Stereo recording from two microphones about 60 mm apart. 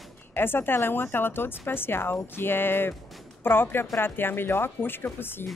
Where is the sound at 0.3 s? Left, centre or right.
Left.